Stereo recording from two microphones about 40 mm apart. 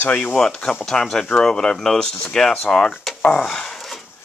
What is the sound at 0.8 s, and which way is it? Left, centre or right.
Speech, centre.